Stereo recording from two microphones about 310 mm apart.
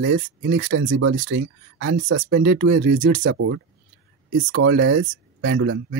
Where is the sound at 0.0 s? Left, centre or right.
Right.